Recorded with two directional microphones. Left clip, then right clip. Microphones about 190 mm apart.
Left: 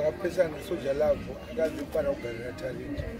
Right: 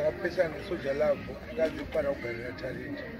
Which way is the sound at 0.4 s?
20° left (ahead or behind).